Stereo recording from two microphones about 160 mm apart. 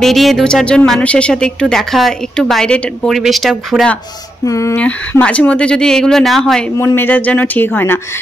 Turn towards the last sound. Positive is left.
turn(degrees=15)  # may be behind; listen again after turning